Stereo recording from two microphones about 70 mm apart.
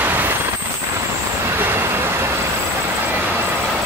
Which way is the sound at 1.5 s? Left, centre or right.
Right.